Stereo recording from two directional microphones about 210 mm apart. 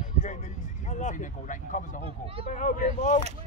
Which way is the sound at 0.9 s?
35° left (ahead or behind).